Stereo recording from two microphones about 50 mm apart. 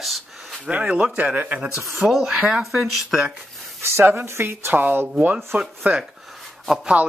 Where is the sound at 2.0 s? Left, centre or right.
Centre.